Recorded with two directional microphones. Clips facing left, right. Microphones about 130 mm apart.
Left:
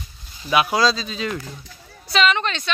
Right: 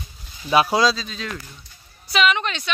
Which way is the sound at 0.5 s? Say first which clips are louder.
Right 1 dB; 35° right (ahead or behind).